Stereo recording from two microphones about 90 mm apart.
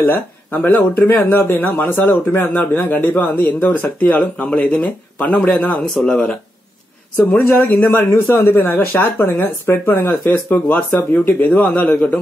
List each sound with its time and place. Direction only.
0.0 s speech: 20° left (ahead or behind)